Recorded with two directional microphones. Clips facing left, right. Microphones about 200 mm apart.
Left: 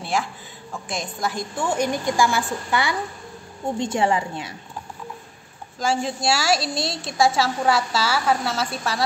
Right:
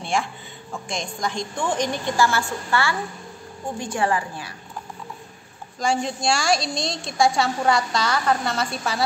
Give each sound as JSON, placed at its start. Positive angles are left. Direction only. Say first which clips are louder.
{"t": 0.0, "sound": "a sound", "louder": "even", "side_deg": 0}
{"t": 0.8, "sound": "a woman's voice", "louder": "left 1 dB", "side_deg": 5}
{"t": 5.8, "sound": "a woman's voice", "louder": "even", "side_deg": 5}